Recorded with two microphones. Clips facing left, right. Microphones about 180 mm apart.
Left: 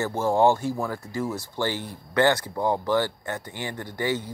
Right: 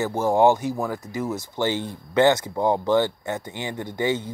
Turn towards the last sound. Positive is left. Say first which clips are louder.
# right 3 dB
turn(degrees=-20)  # may be behind; listen again after turning